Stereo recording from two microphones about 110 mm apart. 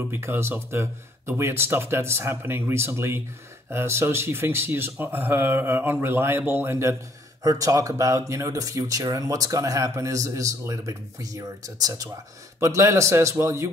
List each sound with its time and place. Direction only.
0.0 s speech: 20° right (ahead or behind)